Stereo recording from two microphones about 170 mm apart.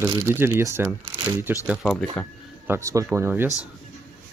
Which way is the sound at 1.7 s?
5° right (ahead or behind).